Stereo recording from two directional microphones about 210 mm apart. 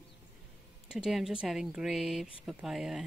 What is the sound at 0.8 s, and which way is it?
Speech, 5° right (ahead or behind).